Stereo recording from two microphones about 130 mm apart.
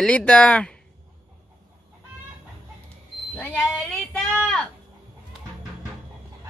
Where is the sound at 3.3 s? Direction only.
10° left (ahead or behind).